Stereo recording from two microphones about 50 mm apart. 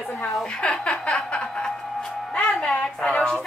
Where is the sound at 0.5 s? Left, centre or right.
Centre.